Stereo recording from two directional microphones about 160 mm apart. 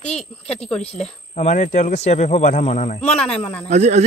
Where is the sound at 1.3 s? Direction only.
50° left (ahead or behind).